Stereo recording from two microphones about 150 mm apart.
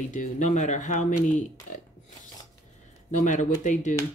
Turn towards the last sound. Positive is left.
turn(degrees=55)  # may be behind; listen again after turning